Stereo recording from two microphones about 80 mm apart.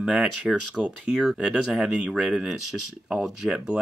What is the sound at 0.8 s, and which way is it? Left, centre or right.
Speech, centre.